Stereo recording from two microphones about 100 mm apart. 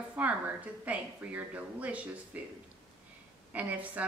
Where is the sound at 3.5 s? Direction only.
15° right (ahead or behind).